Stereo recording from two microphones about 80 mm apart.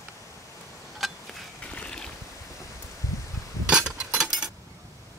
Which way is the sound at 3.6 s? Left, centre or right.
Centre.